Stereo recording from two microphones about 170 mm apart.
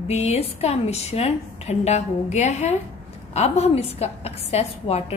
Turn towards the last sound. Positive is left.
turn(degrees=35)  # may be behind; listen again after turning